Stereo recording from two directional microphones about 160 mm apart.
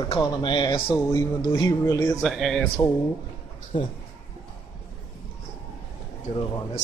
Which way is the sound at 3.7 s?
30° left (ahead or behind).